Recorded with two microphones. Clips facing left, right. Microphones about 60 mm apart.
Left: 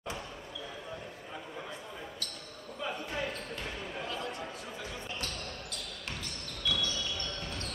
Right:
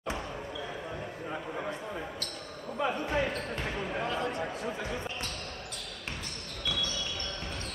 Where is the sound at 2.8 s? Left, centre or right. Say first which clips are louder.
Right 7 dB; right.